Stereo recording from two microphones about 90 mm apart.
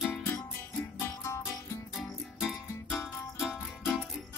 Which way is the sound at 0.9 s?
30° left (ahead or behind).